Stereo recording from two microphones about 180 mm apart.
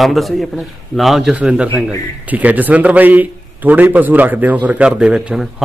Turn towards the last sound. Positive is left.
turn(degrees=-5)  # may be behind; listen again after turning